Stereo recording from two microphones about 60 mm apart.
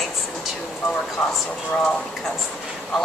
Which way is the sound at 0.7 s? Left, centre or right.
Centre.